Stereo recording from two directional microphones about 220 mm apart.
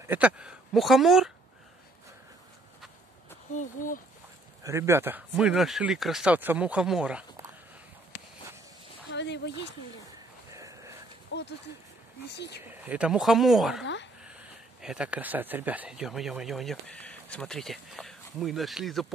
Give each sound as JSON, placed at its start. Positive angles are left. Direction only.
{"t": 0.0, "sound": "speech", "side_deg": -10}
{"t": 3.5, "sound": "speech", "side_deg": 35}
{"t": 4.6, "sound": "speech", "side_deg": -10}
{"t": 9.1, "sound": "speech", "side_deg": 50}
{"t": 10.5, "sound": "a sound", "side_deg": -15}
{"t": 11.3, "sound": "speech", "side_deg": 55}
{"t": 12.6, "sound": "speech", "side_deg": -5}